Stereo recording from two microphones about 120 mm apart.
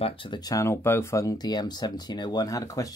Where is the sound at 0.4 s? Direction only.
30° left (ahead or behind).